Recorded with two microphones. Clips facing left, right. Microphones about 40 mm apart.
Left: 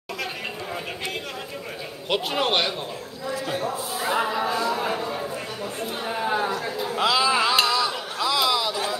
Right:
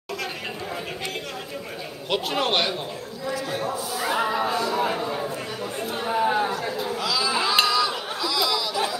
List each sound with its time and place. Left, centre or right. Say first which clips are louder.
2.0 s a man's voice: even; centre
4.0 s a man's voice: even; centre
4.3 s a man's voice: right 1 dB; centre
4.6 s chatter: right 1 dB; centre
6.9 s chatter: left 6 dB; left
7.6 s a sound: right 1 dB; centre
8.3 s chatter: left 3 dB; centre